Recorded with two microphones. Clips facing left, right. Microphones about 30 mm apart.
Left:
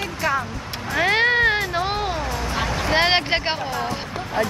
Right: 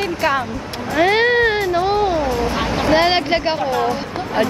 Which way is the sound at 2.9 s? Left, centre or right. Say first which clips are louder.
Right 2 dB; centre.